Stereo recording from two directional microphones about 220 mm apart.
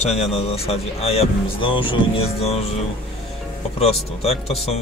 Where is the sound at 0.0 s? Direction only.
30° left (ahead or behind).